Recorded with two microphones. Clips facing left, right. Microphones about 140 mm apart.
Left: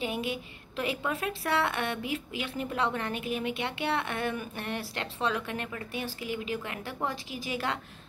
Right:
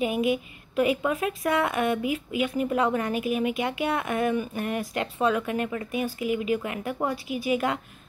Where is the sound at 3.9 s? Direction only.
10° right (ahead or behind).